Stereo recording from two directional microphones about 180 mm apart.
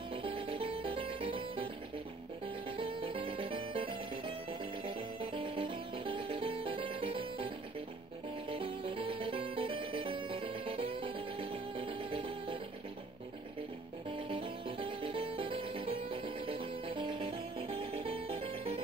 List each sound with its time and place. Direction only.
0.1 s music: 30° right (ahead or behind)
14.1 s music: 30° right (ahead or behind)